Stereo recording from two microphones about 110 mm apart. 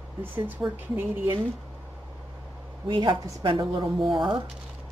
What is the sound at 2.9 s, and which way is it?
Speech, 45° right (ahead or behind).